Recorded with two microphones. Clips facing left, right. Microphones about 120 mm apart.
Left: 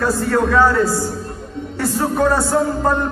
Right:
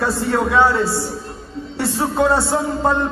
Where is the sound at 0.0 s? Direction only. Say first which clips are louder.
Left 2 dB; 25° right (ahead or behind).